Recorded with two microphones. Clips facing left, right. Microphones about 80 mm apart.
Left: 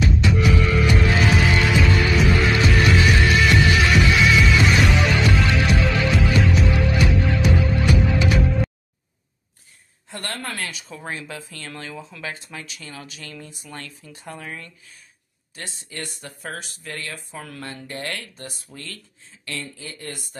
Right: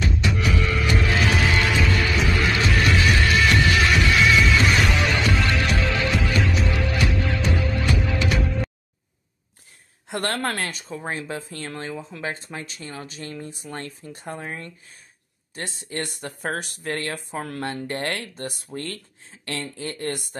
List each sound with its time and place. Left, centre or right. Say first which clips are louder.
0.0 s music: left 4 dB; centre
10.0 s a woman's voice: right 6 dB; right
10.6 s speech: right 2 dB; right
16.2 s speech: right 5 dB; right